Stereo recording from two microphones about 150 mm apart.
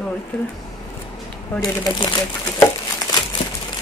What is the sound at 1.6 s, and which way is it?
Speech, 30° left (ahead or behind).